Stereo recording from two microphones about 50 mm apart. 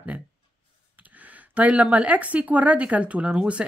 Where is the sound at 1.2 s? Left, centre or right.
Right.